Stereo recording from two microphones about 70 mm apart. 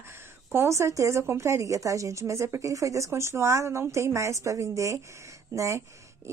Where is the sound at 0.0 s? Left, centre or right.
Right.